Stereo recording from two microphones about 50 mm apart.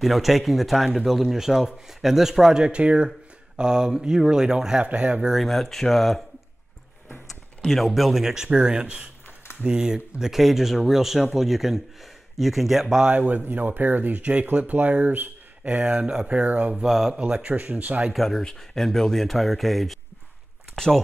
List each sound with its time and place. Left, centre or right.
0.0 s speech: centre
4.8 s speech: right
5.3 s speech: centre
7.7 s speech: centre
13.0 s speech: right
15.6 s speech: right
16.4 s speech: right
16.7 s speech: centre
17.2 s speech: right
18.1 s speech: centre
20.7 s speech: centre